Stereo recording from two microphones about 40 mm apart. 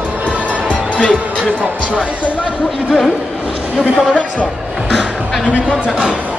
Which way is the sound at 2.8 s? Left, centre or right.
Centre.